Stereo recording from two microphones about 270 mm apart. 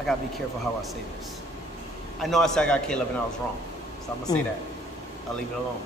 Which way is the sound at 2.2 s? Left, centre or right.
Centre.